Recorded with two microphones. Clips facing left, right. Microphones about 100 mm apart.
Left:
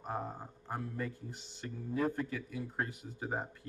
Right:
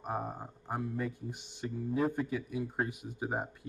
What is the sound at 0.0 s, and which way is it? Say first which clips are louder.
Speech: right 2 dB; 15° right (ahead or behind).